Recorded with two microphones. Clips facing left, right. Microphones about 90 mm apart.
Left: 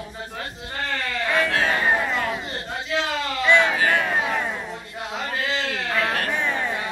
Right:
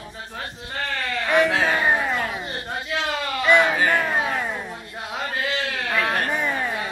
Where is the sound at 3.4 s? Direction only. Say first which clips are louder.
Right 1 dB; 15° right (ahead or behind).